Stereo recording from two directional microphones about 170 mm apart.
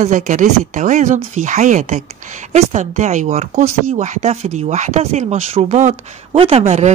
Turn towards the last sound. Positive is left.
turn(degrees=-40)  # may be behind; listen again after turning